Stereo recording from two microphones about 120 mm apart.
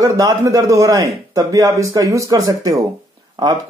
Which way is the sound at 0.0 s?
30° right (ahead or behind).